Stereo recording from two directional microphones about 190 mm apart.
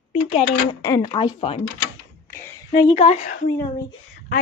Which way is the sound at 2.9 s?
35° left (ahead or behind).